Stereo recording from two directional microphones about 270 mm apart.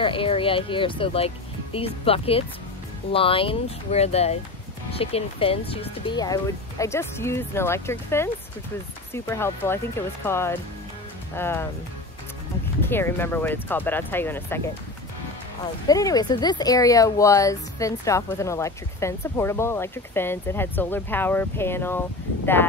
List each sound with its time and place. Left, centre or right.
0.0 s speech: centre
12.8 s speech: centre
15.9 s speech: centre